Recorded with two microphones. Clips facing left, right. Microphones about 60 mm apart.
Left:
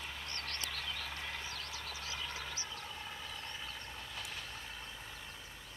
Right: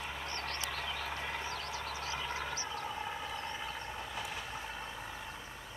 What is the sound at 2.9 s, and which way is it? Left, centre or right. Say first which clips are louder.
Vehicle: right 7 dB; right.